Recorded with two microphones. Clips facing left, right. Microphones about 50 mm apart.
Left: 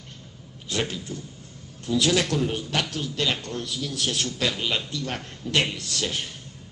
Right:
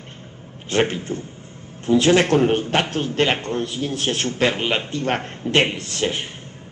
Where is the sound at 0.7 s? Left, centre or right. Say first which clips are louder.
Right 8 dB; right.